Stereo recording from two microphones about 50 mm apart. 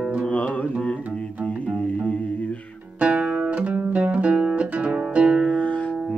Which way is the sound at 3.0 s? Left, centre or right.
Right.